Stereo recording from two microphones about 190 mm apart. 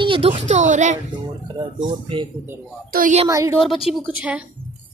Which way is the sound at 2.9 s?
45° right (ahead or behind).